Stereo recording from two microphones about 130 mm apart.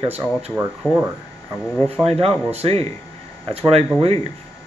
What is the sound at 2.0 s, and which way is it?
Speech, 50° right (ahead or behind).